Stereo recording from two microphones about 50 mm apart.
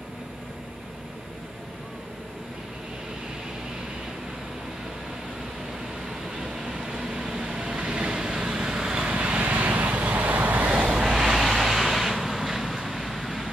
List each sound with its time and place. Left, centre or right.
6.2 s vehicle: centre
9.4 s vehicle: right
11.1 s vehicle: centre